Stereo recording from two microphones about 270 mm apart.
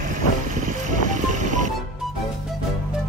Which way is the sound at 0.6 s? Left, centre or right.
Right.